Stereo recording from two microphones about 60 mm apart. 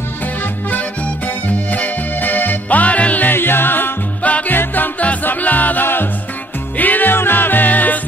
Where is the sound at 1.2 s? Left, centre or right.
Left.